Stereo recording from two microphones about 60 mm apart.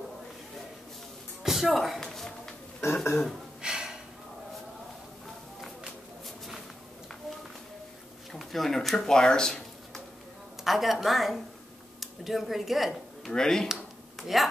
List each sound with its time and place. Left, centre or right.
1.4 s speech: centre
2.0 s a sound: centre
2.8 s speech: left
3.6 s gasp: centre
6.2 s a sound: centre
8.3 s speech: centre
10.6 s a woman's voice: centre
13.3 s speech: centre